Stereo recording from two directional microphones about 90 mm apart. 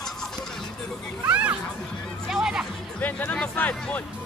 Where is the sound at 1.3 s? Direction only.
15° right (ahead or behind).